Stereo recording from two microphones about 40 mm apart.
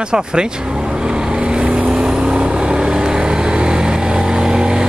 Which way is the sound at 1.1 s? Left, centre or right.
Right.